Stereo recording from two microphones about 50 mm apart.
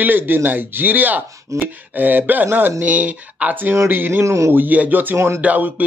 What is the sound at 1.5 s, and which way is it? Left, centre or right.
Chopping, right.